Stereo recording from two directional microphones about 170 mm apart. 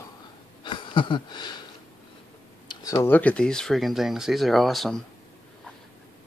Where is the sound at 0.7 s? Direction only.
30° left (ahead or behind).